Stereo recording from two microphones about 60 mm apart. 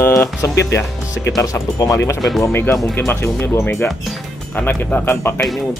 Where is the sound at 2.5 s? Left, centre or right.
Left.